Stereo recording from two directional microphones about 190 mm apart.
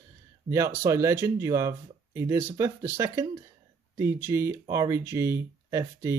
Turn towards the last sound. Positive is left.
turn(degrees=-15)  # may be behind; listen again after turning